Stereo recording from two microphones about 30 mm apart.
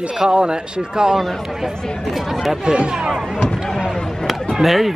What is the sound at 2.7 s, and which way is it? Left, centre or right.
Speech, right.